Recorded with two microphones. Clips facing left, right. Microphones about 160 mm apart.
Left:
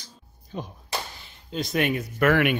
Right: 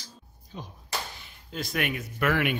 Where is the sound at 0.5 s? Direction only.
65° left (ahead or behind).